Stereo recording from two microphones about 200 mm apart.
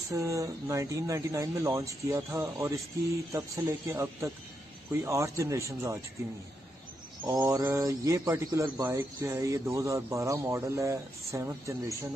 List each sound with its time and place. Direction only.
0.1 s speech: 15° right (ahead or behind)
7.2 s speech: 15° right (ahead or behind)